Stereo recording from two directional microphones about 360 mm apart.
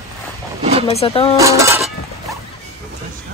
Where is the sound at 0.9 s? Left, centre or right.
Centre.